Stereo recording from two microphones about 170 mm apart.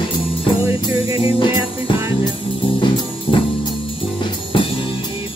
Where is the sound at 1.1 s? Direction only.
30° left (ahead or behind).